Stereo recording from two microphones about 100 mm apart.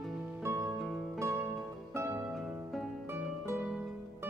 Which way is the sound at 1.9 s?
25° right (ahead or behind).